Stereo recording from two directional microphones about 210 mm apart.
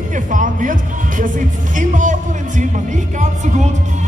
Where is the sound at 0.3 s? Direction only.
40° right (ahead or behind).